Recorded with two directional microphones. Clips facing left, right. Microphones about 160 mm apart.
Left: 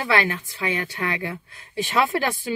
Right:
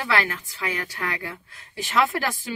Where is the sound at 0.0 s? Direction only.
25° left (ahead or behind).